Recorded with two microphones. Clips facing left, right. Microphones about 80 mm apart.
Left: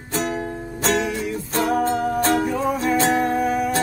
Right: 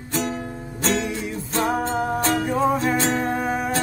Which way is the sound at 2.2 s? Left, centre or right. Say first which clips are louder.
Left 3 dB; left.